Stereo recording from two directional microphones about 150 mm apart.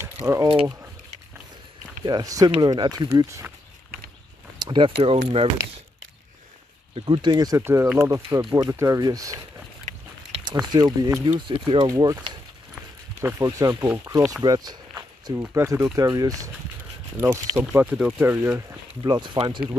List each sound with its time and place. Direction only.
0.0 s mechanisms: 20° right (ahead or behind)
2.0 s speech: 25° right (ahead or behind)
4.6 s speech: 30° right (ahead or behind)
7.0 s speech: 30° right (ahead or behind)
8.4 s speech: 30° right (ahead or behind)
8.6 s speech: 20° right (ahead or behind)
9.9 s a sound: 55° right (ahead or behind)
10.6 s speech: 25° right (ahead or behind)
11.3 s speech: 35° right (ahead or behind)
17.6 s speech: 10° right (ahead or behind)
19.0 s speech: 30° right (ahead or behind)